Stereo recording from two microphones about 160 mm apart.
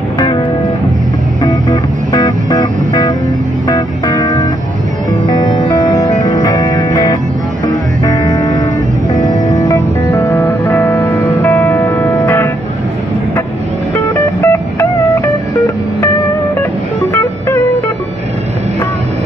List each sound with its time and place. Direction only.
1.4 s music: 25° left (ahead or behind)
13.9 s music: 15° left (ahead or behind)